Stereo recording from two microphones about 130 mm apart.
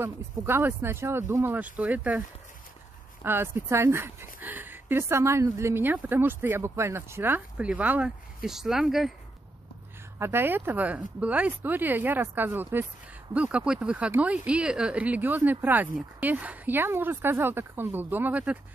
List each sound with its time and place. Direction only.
0.0 s speech: 20° right (ahead or behind)
3.3 s speech: 15° right (ahead or behind); by 9.1 s centre (ahead or behind)
10.1 s speech: 20° right (ahead or behind)